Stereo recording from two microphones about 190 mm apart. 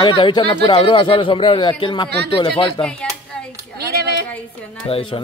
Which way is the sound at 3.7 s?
55° right (ahead or behind).